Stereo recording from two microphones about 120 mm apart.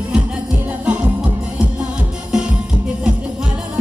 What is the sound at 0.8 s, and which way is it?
Music, 10° right (ahead or behind).